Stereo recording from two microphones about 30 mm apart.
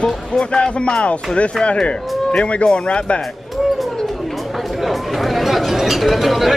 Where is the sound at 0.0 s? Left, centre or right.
Left.